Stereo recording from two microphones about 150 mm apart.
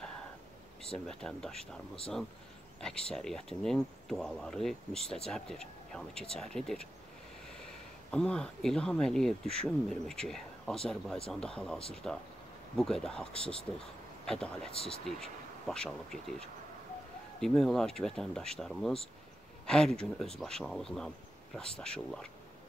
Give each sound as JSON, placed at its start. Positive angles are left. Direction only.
{"t": 0.9, "sound": "speech", "side_deg": 5}
{"t": 2.8, "sound": "speech", "side_deg": 5}
{"t": 8.1, "sound": "speech", "side_deg": 5}
{"t": 14.7, "sound": "speech", "side_deg": 40}
{"t": 15.1, "sound": "speech", "side_deg": 5}